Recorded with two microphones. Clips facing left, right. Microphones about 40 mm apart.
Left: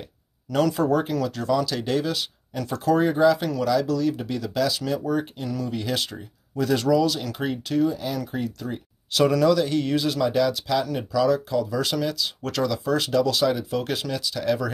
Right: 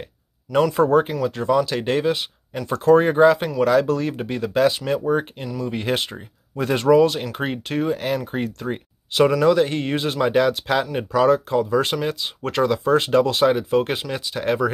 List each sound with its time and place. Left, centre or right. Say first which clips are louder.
0.5 s speech: right 4 dB; right
2.7 s speech: right 6 dB; right
9.4 s speech: right 3 dB; right